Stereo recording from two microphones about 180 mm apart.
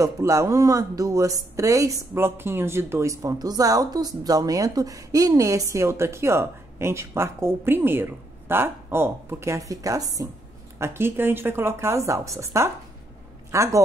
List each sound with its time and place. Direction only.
0.0 s a man's voice: 15° right (ahead or behind)